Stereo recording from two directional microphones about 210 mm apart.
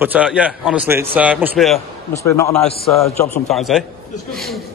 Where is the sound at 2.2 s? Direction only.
15° left (ahead or behind).